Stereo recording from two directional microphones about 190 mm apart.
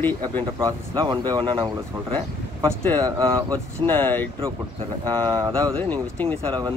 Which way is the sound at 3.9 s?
10° left (ahead or behind).